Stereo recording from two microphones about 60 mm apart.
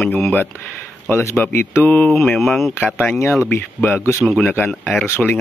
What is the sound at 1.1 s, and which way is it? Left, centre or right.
Speech, left.